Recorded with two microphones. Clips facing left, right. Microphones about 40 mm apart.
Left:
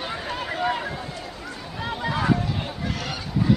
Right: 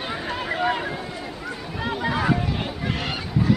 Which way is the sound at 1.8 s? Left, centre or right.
Centre.